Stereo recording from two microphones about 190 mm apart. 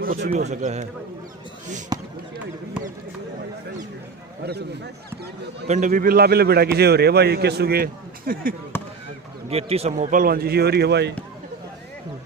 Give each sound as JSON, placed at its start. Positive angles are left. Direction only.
{"t": 0.0, "sound": "speech", "side_deg": -50}
{"t": 0.3, "sound": "speech", "side_deg": -35}
{"t": 1.9, "sound": "basketball bounce", "side_deg": -20}
{"t": 5.7, "sound": "a man's voice", "side_deg": -40}
{"t": 9.5, "sound": "speech", "side_deg": -30}